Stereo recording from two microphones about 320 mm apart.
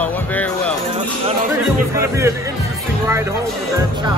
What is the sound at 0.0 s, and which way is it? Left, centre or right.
Music, centre.